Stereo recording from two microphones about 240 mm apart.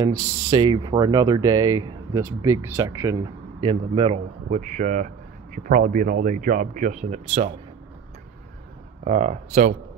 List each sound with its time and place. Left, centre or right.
0.0 s speech: centre
9.0 s speech: right